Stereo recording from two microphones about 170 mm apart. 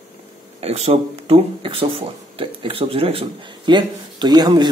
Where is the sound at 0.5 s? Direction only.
40° right (ahead or behind).